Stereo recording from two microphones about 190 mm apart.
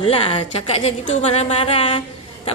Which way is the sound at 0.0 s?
30° left (ahead or behind).